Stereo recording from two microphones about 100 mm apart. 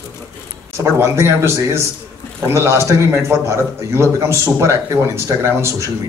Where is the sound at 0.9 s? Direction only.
25° right (ahead or behind).